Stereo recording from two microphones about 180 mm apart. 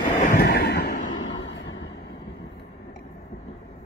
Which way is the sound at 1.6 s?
90° left.